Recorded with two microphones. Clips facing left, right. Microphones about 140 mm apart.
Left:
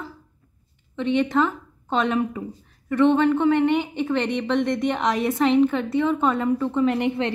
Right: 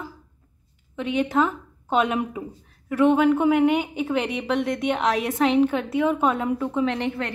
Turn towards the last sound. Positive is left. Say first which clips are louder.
# left 3 dB
turn(degrees=15)  # may be behind; listen again after turning